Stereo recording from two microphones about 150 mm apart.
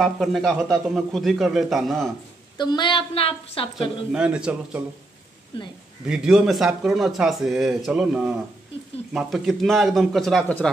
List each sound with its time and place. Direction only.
0.0 s speech: centre (ahead or behind)
2.5 s a woman's voice: 30° left (ahead or behind)
4.1 s a man's voice: 5° right (ahead or behind)
6.0 s speech: 5° right (ahead or behind)